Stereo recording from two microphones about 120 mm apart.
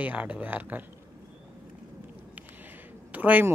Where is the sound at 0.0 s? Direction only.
10° right (ahead or behind).